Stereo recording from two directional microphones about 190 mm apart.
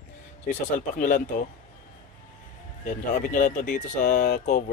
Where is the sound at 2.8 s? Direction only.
45° left (ahead or behind).